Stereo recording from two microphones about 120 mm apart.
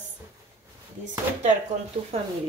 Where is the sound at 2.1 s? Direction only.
60° right (ahead or behind).